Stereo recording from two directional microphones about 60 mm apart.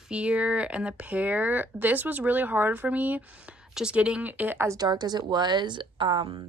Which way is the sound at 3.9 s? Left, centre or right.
Centre.